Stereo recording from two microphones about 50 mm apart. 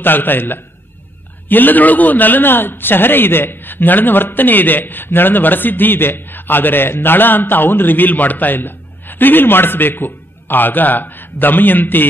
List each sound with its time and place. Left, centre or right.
0.0 s a man's voice: left